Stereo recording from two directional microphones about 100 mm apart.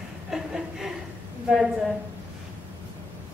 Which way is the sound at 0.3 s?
5° right (ahead or behind).